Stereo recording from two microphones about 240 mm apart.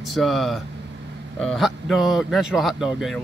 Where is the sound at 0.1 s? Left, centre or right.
Centre.